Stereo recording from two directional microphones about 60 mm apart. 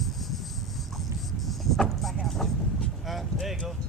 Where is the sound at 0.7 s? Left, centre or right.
Centre.